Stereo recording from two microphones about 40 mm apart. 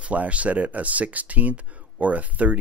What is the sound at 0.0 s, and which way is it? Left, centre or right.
Speech, right.